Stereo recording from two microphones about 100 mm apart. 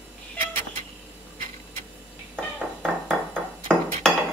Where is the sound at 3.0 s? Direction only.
15° right (ahead or behind).